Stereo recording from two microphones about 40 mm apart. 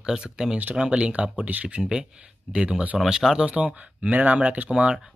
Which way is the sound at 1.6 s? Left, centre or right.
Centre.